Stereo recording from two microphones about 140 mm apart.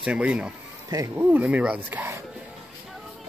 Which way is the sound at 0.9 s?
25° right (ahead or behind).